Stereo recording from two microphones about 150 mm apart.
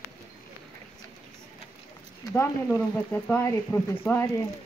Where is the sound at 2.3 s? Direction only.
15° left (ahead or behind).